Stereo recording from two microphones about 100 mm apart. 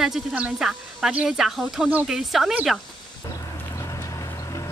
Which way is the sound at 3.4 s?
35° left (ahead or behind).